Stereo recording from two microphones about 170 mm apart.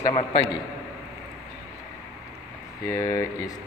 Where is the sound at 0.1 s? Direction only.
30° left (ahead or behind).